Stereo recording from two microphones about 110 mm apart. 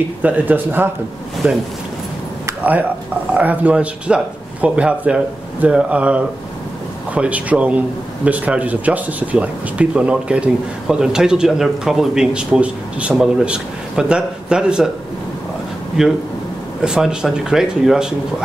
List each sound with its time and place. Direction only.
0.2 s speech: 15° right (ahead or behind)
3.3 s speech: 15° right (ahead or behind)
16.0 s speech: 5° right (ahead or behind)